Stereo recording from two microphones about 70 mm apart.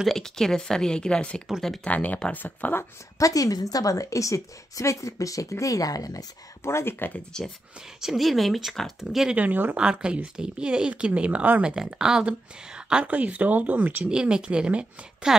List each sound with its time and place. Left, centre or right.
0.0 s speech: centre; by 2.8 s left
3.2 s a woman's voice: left
6.6 s speech: left
7.3 s speech: centre
8.0 s speech: centre
9.3 s speech: right
9.8 s speech: centre
11.7 s speech: centre; by 14.0 s right
14.0 s speech: centre